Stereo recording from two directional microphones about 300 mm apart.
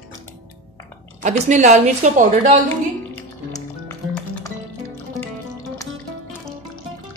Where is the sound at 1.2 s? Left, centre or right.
Right.